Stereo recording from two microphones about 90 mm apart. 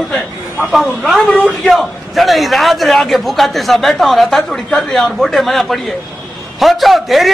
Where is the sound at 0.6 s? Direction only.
5° right (ahead or behind).